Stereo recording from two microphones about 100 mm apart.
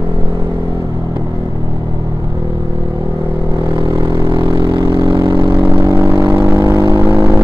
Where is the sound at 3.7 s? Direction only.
55° right (ahead or behind).